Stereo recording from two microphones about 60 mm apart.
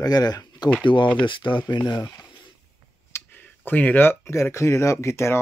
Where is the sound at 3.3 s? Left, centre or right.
Left.